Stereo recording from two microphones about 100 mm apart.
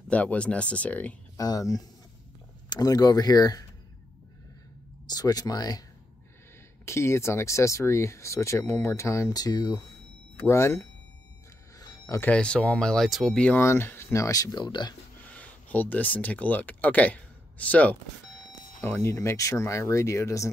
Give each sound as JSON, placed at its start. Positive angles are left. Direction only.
{"t": 0.1, "sound": "speech", "side_deg": 15}
{"t": 1.3, "sound": "speech", "side_deg": 35}
{"t": 5.1, "sound": "speech", "side_deg": 40}
{"t": 6.9, "sound": "speech", "side_deg": 25}
{"t": 9.3, "sound": "speech", "side_deg": 40}
{"t": 10.4, "sound": "speech", "side_deg": 25}
{"t": 11.8, "sound": "bicycle bell", "side_deg": 40}
{"t": 12.2, "sound": "speech", "side_deg": 10}
{"t": 13.6, "sound": "speech", "side_deg": 25}
{"t": 14.6, "sound": "speech", "side_deg": 50}
{"t": 15.1, "sound": "speech", "side_deg": 15}